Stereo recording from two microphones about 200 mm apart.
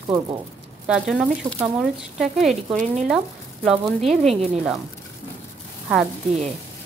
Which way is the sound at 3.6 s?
Centre (ahead or behind).